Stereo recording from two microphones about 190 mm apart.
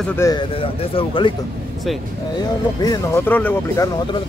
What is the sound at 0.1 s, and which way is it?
Speech, 15° left (ahead or behind).